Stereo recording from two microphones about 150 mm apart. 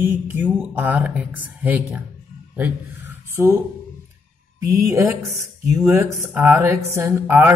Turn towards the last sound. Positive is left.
turn(degrees=-15)  # may be behind; listen again after turning